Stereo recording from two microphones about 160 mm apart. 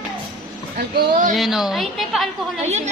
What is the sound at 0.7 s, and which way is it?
Speech, 85° right.